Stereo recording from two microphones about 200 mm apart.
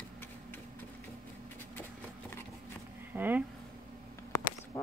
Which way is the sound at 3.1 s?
10° right (ahead or behind).